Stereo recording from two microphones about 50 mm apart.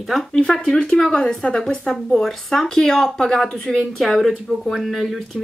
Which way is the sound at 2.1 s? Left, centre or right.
Centre.